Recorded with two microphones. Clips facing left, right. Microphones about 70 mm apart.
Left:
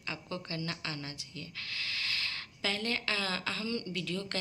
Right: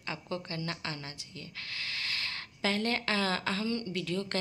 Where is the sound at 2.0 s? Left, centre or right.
Right.